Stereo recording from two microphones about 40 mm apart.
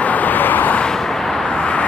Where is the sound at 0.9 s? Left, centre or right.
Centre.